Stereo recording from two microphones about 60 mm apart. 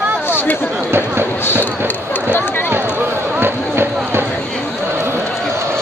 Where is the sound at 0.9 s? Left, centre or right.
Right.